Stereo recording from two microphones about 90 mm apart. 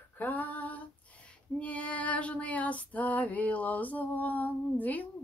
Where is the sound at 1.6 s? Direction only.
15° left (ahead or behind).